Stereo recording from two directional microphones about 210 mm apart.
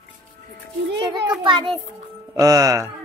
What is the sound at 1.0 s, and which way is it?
A child's voice, 20° right (ahead or behind).